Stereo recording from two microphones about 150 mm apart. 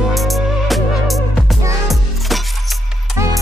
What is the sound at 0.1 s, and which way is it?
Music, centre (ahead or behind).